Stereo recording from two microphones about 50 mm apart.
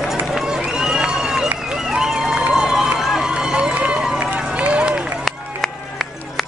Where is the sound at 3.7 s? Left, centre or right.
Right.